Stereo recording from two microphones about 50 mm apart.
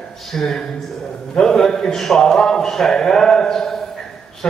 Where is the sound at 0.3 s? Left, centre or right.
Centre.